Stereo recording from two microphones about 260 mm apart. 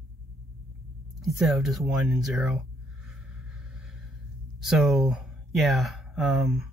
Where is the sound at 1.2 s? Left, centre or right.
Centre.